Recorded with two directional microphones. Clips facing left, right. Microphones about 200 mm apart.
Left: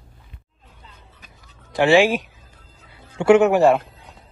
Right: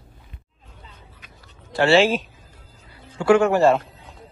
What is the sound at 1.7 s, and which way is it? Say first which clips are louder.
A man's voice: left 1 dB; 15° left (ahead or behind).